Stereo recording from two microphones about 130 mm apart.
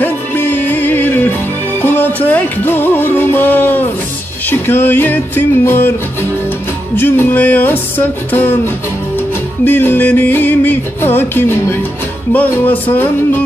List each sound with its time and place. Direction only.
0.0 s music: 15° left (ahead or behind)
7.0 s music: 15° left (ahead or behind)
9.7 s music: 15° left (ahead or behind)